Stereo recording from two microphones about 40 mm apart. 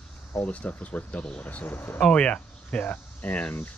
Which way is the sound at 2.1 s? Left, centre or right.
Left.